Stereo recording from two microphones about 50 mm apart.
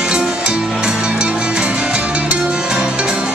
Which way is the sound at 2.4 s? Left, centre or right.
Centre.